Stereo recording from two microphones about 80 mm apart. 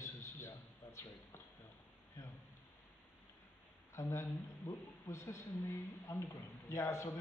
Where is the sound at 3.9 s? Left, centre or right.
Left.